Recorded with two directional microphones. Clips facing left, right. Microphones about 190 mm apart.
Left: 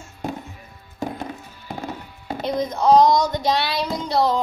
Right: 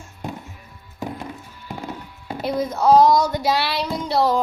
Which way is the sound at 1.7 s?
25° left (ahead or behind).